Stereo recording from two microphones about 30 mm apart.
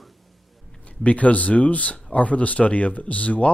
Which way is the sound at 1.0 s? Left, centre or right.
Left.